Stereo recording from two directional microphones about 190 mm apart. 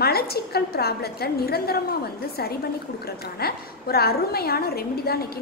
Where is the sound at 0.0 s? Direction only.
55° left (ahead or behind).